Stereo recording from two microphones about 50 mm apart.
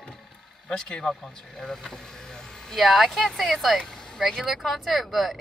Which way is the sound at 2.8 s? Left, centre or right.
Centre.